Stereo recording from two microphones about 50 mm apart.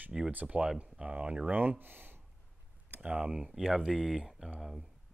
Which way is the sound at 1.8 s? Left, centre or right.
Right.